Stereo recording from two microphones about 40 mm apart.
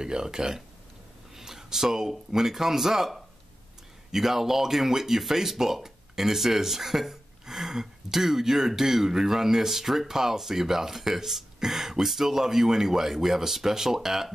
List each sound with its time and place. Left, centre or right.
0.0 s speech: centre